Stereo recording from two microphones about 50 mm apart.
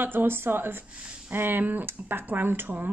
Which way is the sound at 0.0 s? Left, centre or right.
Right.